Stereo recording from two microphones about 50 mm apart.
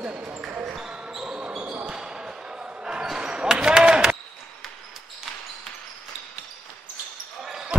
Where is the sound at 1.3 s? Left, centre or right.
Right.